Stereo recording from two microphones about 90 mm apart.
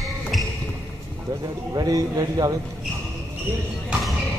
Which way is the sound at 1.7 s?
45° right (ahead or behind).